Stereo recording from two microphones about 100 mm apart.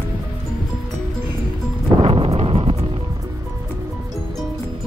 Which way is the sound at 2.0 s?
75° right (ahead or behind).